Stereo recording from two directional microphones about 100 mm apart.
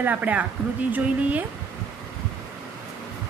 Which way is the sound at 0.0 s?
15° right (ahead or behind).